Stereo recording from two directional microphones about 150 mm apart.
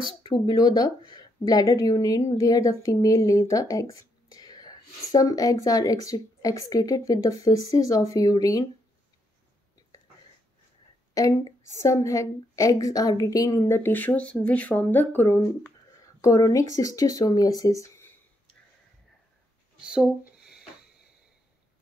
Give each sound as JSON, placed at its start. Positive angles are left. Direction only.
{"t": 0.0, "sound": "a woman's voice", "side_deg": 30}
{"t": 11.1, "sound": "a woman's voice", "side_deg": 20}
{"t": 19.8, "sound": "a sound", "side_deg": -5}